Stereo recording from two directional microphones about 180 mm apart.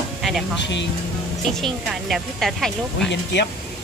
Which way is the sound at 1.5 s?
Centre (ahead or behind).